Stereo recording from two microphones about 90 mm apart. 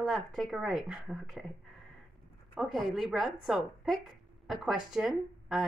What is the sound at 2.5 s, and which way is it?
A woman's voice, centre (ahead or behind).